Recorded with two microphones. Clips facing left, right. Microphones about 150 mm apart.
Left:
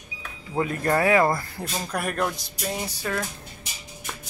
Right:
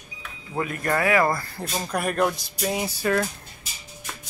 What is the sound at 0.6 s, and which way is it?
Speech, 25° left (ahead or behind).